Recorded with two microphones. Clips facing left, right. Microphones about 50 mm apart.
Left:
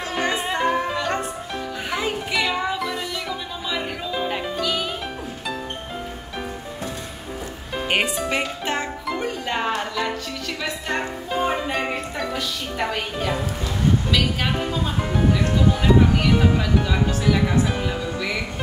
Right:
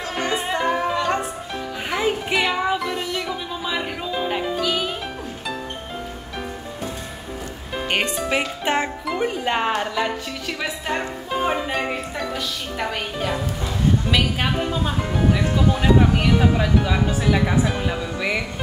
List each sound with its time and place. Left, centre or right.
0.1 s music: centre
2.3 s music: centre
7.7 s music: centre
8.4 s speech: centre
10.9 s music: centre
14.6 s speech: centre